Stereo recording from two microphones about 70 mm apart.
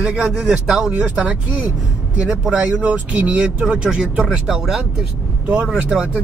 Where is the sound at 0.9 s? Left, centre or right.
Centre.